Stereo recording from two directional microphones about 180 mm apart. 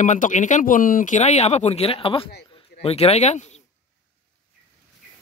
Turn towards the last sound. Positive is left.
turn(degrees=40)  # may be behind; listen again after turning